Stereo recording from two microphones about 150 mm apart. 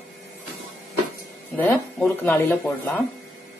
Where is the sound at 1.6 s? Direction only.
10° left (ahead or behind).